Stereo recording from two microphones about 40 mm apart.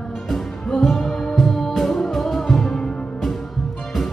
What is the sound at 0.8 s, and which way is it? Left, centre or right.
Music, centre.